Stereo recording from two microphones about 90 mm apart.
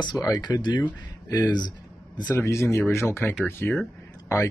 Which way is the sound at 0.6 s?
55° left (ahead or behind).